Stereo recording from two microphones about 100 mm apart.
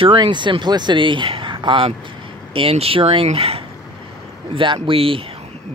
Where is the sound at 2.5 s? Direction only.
75° right (ahead or behind).